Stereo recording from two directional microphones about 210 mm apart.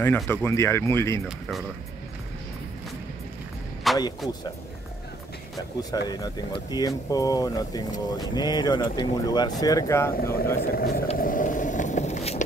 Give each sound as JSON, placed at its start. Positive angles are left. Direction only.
{"t": 0.0, "sound": "speech", "side_deg": 10}
{"t": 3.9, "sound": "a sound", "side_deg": 0}
{"t": 5.8, "sound": "speech", "side_deg": 20}
{"t": 10.6, "sound": "speech", "side_deg": 45}
{"t": 11.1, "sound": "vehicle", "side_deg": 40}